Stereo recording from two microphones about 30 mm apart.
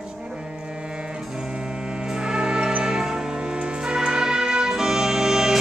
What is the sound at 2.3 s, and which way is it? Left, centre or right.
Music, right.